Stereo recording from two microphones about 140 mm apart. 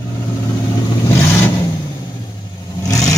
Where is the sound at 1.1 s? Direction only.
15° left (ahead or behind).